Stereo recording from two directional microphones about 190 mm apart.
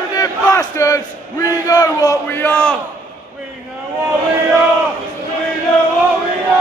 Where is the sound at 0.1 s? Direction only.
20° left (ahead or behind).